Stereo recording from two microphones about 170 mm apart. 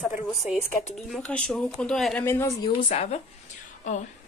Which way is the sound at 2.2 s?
15° left (ahead or behind).